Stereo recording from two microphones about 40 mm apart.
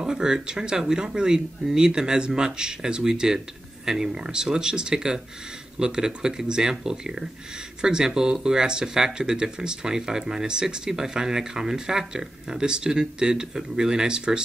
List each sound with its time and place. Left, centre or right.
0.0 s speech: centre